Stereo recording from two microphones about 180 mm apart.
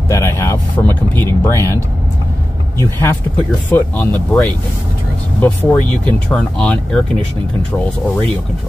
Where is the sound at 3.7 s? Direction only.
10° left (ahead or behind).